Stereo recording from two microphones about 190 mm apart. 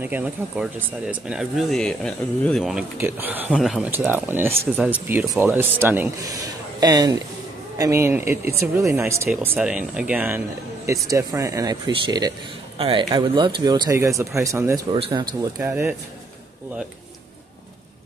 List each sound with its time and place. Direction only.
0.0 s speech: 10° right (ahead or behind)
3.0 s speech: 10° right (ahead or behind)
15.7 s speech: 10° right (ahead or behind)